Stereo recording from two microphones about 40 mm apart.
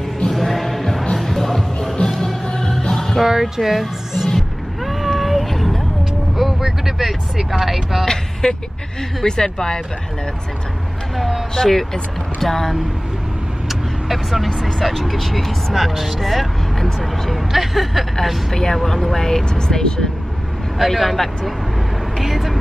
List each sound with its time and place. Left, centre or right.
0.3 s music: centre
2.4 s music: centre
3.2 s speech: centre
4.4 s vehicle: centre
6.3 s speech: centre
8.0 s speech: centre
11.1 s speech: centre
11.5 s speech: centre
13.7 s vehicle: centre
14.8 s speech: centre
18.5 s speech: centre
20.8 s speech: centre